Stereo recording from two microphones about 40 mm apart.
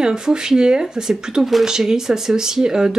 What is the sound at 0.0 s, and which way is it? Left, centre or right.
Speech, centre.